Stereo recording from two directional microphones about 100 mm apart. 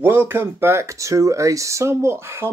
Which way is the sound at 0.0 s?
20° right (ahead or behind).